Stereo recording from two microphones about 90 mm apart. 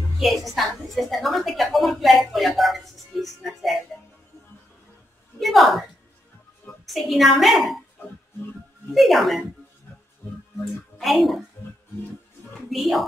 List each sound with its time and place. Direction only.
0.2 s speech: centre (ahead or behind)
5.4 s speech: centre (ahead or behind)
6.9 s speech: centre (ahead or behind)
8.9 s speech: centre (ahead or behind)
10.6 s speech: centre (ahead or behind)
12.6 s speech: centre (ahead or behind)